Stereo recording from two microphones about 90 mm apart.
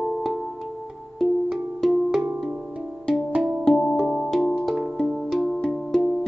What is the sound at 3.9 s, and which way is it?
Music, 10° right (ahead or behind).